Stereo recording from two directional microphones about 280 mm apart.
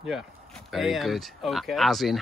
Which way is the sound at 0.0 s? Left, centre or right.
Centre.